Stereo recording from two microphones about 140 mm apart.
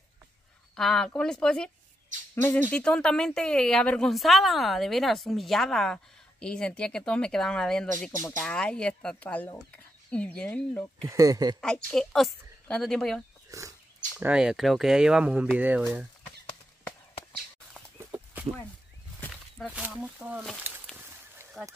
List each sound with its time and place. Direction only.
0.7 s a woman's voice: 5° left (ahead or behind)
2.7 s a woman's voice: 5° left (ahead or behind)
11.1 s speech: 25° right (ahead or behind)
11.6 s a woman's voice: 5° left (ahead or behind)
13.5 s wild animals: 25° right (ahead or behind)
14.2 s a woman's voice: 5° right (ahead or behind)
17.9 s a sound: 15° right (ahead or behind)
19.7 s speech: 5° right (ahead or behind)